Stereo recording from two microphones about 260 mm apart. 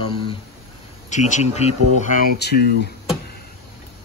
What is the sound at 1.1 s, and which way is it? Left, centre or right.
A man's voice, left.